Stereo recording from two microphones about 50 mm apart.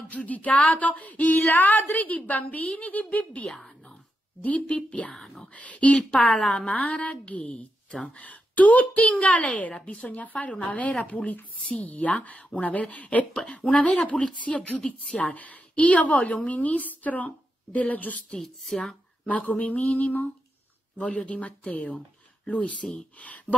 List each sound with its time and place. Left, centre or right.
0.1 s a woman's voice: left
0.7 s female singing: left
2.6 s a woman's voice: left
3.6 s whispering: centre
4.4 s a woman's voice: left
5.1 s speech: centre
5.4 s a woman's voice: left
12.9 s female singing: left
13.3 s a woman's voice: centre
18.4 s speech: centre
19.2 s a woman's voice: left